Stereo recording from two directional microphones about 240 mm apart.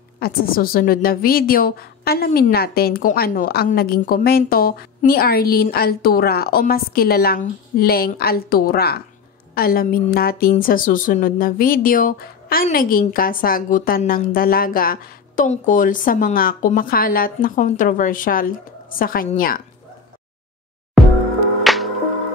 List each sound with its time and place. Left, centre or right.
0.2 s a woman's voice: left
21.0 s music: centre